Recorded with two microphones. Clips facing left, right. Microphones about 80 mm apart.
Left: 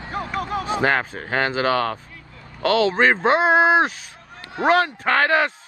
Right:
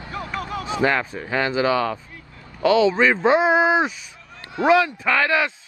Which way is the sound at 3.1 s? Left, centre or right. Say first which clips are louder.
Even; left.